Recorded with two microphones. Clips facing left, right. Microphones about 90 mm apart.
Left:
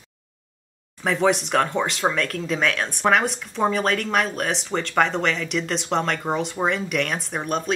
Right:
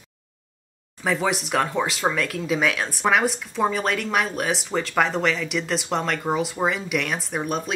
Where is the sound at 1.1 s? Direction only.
Centre (ahead or behind).